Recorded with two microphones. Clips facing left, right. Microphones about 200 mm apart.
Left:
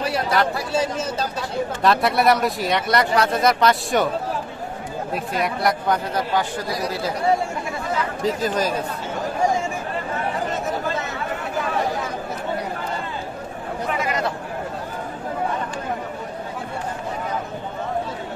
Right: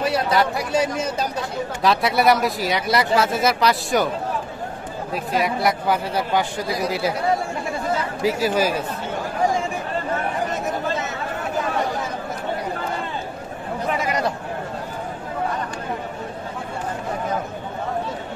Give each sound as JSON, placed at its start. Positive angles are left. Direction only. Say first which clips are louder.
{"t": 0.0, "sound": "speech", "louder": "right 1 dB", "side_deg": -20}
{"t": 1.8, "sound": "speech", "louder": "even", "side_deg": 0}
{"t": 5.1, "sound": "speech", "louder": "right 3 dB", "side_deg": 0}
{"t": 8.2, "sound": "speech", "louder": "right 3 dB", "side_deg": -10}